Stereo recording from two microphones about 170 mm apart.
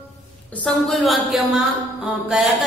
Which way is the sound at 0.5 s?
5° left (ahead or behind).